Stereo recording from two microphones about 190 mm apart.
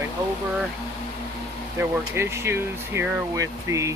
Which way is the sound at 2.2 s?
15° right (ahead or behind).